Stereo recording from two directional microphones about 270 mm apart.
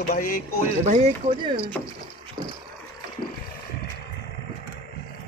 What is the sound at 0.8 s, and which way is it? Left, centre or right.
Speech, right.